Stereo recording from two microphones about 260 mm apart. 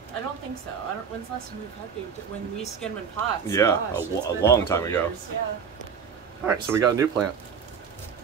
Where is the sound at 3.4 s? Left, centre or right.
Centre.